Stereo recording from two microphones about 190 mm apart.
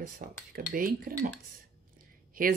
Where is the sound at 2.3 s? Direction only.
45° right (ahead or behind).